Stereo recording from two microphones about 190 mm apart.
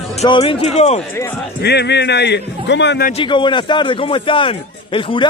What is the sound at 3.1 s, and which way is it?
A man's voice, 25° left (ahead or behind).